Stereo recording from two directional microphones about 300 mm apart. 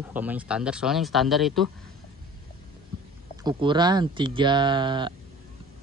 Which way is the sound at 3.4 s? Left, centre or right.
Centre.